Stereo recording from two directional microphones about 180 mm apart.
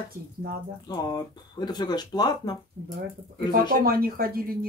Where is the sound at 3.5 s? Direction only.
55° right (ahead or behind).